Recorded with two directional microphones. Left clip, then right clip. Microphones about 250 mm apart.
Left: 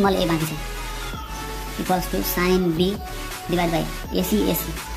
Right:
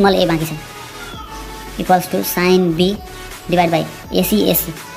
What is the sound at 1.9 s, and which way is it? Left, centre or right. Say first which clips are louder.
A woman's voice: right 9 dB; centre.